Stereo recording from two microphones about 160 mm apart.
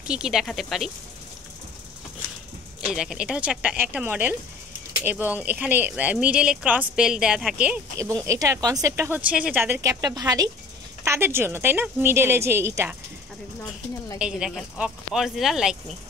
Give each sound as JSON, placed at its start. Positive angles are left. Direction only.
{"t": 0.0, "sound": "speech", "side_deg": -5}
{"t": 2.9, "sound": "speech", "side_deg": -5}
{"t": 8.3, "sound": "speech", "side_deg": -20}
{"t": 14.1, "sound": "speech", "side_deg": -5}